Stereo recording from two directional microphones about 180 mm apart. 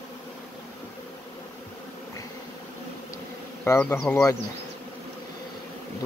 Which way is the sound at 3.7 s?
10° left (ahead or behind).